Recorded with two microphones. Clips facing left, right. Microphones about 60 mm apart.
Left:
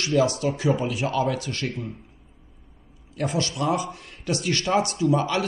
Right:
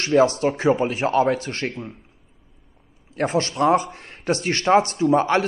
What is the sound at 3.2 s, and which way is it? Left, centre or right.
A man's voice, right.